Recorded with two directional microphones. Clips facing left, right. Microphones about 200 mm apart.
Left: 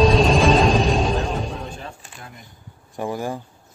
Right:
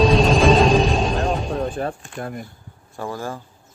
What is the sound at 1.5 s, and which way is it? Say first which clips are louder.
Chopping: right 10 dB; 50° right (ahead or behind).